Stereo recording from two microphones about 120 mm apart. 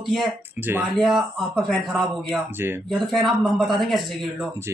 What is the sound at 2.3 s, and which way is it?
Speech, 20° right (ahead or behind).